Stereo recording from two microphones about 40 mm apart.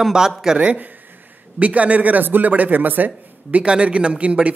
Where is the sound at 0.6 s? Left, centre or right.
Right.